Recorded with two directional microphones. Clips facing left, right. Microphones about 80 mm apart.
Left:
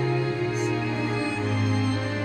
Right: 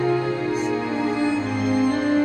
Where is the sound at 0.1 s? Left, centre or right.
Right.